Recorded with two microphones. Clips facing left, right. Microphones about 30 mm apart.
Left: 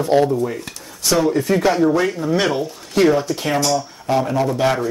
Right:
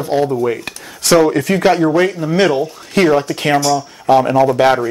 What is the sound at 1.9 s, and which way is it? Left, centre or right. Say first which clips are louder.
Speech: right 4 dB; centre.